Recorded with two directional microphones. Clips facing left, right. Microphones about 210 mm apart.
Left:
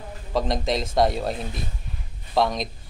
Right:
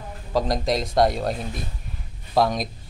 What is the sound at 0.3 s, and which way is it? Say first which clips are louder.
Speech: right 1 dB; centre (ahead or behind).